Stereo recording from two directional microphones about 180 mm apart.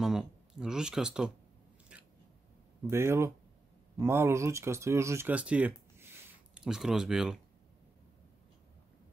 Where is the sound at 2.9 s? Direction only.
15° right (ahead or behind).